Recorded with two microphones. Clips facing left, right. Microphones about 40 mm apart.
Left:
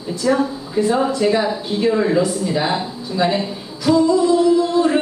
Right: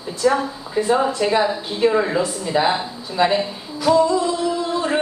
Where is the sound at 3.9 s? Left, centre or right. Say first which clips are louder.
Left 2 dB; centre.